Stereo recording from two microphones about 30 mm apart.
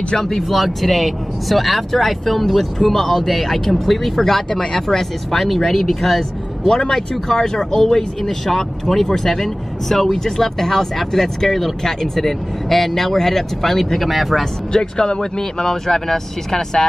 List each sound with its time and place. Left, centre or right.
0.4 s speech: centre
4.5 s speech: left
4.8 s speech: centre
14.4 s speech: left
15.7 s speech: centre